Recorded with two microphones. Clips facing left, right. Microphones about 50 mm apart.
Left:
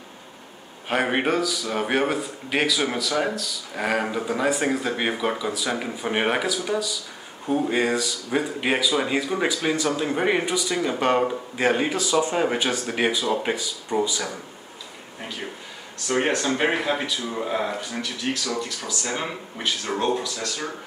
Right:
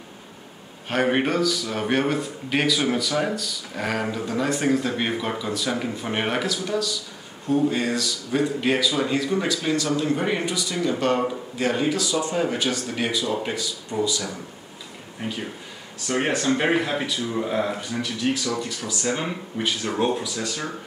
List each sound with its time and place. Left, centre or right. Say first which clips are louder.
0.8 s a man's voice: right 1 dB; centre; by 14.3 s left
16.1 s a man's voice: even; centre
18.3 s a man's voice: right 1 dB; centre